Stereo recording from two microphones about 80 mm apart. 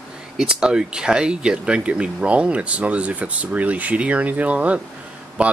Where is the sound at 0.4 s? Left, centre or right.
Centre.